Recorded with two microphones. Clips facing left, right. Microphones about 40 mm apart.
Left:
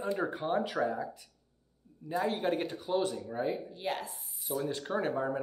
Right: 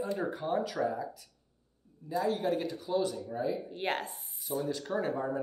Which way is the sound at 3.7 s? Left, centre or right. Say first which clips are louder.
Right 2 dB; right.